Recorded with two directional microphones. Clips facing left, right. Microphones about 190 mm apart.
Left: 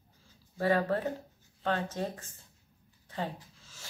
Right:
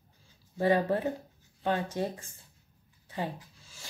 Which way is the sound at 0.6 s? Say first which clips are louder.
Right 2 dB; 20° right (ahead or behind).